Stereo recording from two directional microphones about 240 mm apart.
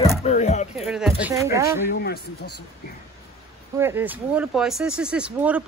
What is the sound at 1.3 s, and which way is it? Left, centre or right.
Speech, centre.